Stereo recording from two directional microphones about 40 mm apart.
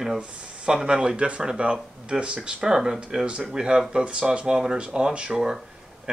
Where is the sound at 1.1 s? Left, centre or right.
Right.